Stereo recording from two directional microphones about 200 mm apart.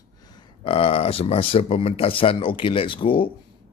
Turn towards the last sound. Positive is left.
turn(degrees=25)  # may be behind; listen again after turning